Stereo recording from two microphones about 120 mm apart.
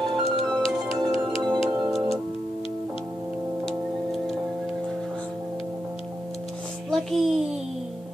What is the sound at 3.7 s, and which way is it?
Tick-tock, centre (ahead or behind).